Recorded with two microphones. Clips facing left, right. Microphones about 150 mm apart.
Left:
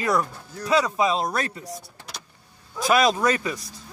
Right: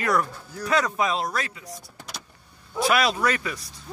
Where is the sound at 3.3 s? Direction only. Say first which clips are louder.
Left 3 dB; 30° left (ahead or behind).